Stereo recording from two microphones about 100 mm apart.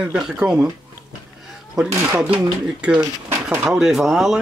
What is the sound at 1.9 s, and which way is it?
Speech, 25° right (ahead or behind).